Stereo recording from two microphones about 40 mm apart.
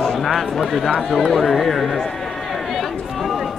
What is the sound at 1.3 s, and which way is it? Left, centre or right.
Speech, centre.